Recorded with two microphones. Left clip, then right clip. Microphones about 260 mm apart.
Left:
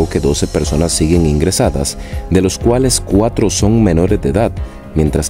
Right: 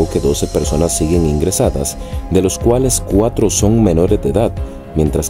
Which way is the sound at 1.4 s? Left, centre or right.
Centre.